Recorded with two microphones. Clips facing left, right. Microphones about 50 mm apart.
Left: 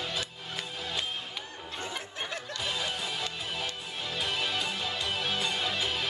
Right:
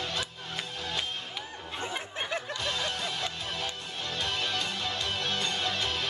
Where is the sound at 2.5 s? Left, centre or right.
Centre.